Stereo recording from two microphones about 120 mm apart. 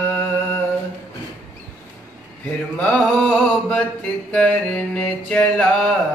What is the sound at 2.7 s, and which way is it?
Mantra, 10° left (ahead or behind).